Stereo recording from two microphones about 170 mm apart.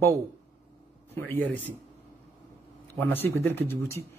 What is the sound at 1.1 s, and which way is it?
Speech, 10° left (ahead or behind).